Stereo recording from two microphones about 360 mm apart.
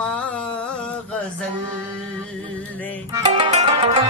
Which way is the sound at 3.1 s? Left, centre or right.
Centre.